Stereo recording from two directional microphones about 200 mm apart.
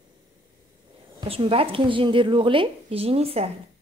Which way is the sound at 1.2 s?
25° right (ahead or behind).